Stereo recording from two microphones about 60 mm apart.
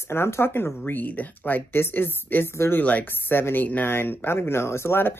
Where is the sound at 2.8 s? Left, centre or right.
Left.